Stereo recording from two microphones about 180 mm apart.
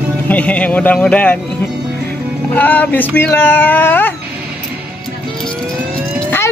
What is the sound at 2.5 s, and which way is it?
Speech, 10° left (ahead or behind).